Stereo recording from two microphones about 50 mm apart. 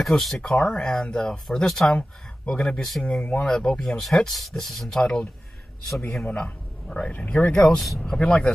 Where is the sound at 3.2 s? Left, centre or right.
Left.